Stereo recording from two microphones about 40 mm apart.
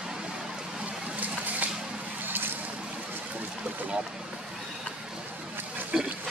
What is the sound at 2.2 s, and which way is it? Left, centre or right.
Vehicle, right.